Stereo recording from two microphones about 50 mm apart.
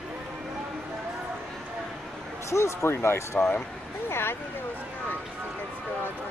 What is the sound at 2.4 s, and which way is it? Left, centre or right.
Speech, left.